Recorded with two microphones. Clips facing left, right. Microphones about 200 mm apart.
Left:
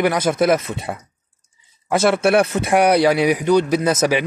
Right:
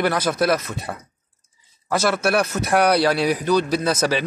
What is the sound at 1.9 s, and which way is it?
Speech, 25° left (ahead or behind).